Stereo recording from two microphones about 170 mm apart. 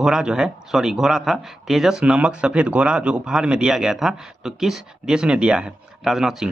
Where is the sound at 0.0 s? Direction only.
5° right (ahead or behind).